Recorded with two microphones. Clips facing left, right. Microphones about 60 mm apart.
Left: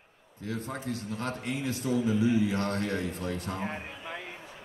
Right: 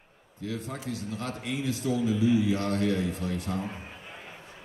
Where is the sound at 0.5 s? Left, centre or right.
Left.